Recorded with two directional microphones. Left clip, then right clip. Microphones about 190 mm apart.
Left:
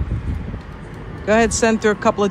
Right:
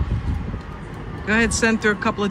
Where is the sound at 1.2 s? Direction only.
10° left (ahead or behind).